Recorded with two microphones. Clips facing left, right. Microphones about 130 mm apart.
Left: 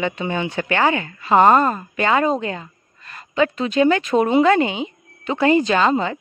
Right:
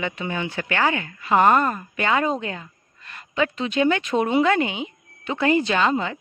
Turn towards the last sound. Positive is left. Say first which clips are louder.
# left 4 dB
turn(degrees=35)  # may be behind; listen again after turning